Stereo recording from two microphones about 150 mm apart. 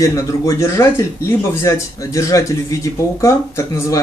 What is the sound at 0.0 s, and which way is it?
Speech, 20° left (ahead or behind).